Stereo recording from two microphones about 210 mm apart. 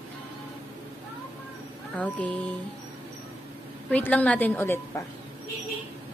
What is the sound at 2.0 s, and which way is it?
Speech, 5° left (ahead or behind).